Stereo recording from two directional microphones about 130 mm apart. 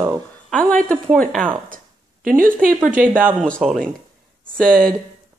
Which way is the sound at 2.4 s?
90° right.